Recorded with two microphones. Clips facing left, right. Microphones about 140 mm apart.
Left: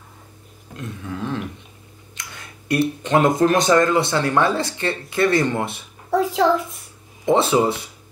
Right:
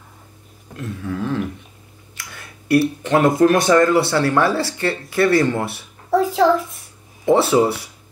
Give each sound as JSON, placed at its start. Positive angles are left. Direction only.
{"t": 0.7, "sound": "speech", "side_deg": 20}
{"t": 6.0, "sound": "a child's voice", "side_deg": 0}
{"t": 7.2, "sound": "speech", "side_deg": 20}